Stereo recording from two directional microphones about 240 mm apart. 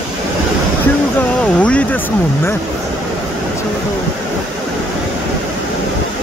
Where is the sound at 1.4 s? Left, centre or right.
Centre.